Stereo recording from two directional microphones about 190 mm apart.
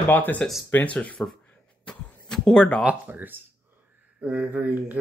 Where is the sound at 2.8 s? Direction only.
10° right (ahead or behind).